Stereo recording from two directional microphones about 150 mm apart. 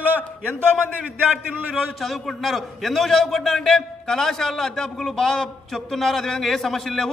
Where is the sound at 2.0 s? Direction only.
Centre (ahead or behind).